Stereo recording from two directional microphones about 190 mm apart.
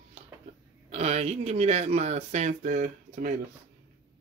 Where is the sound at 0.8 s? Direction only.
35° right (ahead or behind).